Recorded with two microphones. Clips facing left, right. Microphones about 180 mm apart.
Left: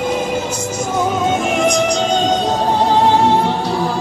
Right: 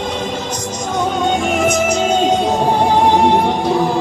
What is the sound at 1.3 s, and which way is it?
Music, centre (ahead or behind).